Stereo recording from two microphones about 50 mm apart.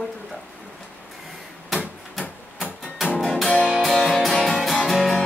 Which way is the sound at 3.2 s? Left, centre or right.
Centre.